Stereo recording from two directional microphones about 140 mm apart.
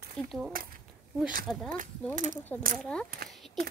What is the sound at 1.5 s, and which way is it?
Speech, 5° left (ahead or behind).